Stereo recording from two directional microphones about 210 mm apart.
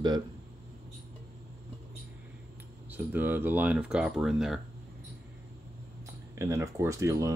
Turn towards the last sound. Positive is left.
turn(degrees=-15)  # may be behind; listen again after turning